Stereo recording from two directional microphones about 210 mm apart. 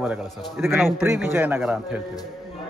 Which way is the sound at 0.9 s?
10° right (ahead or behind).